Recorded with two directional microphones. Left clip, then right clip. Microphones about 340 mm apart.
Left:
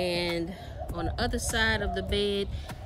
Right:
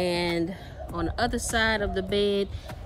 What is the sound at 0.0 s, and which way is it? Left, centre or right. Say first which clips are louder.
A woman's voice: right 3 dB; centre.